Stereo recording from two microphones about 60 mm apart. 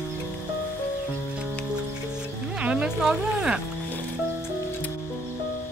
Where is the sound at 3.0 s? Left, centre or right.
Centre.